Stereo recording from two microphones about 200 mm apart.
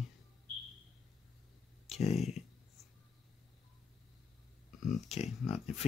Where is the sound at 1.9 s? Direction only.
35° left (ahead or behind).